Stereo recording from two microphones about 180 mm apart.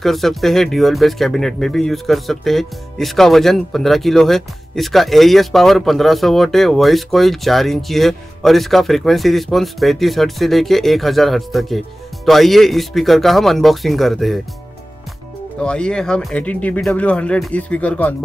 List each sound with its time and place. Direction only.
0.0 s speech: centre (ahead or behind)
15.6 s speech: 5° left (ahead or behind)